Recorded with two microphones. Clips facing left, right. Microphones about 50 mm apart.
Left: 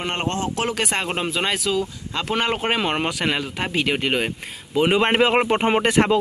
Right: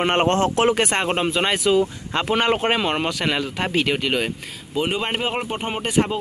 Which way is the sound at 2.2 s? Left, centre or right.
Centre.